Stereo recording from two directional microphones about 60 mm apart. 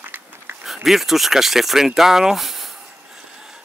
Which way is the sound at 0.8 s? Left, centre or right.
Centre.